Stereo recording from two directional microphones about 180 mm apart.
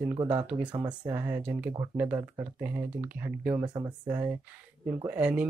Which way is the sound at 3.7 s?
20° right (ahead or behind).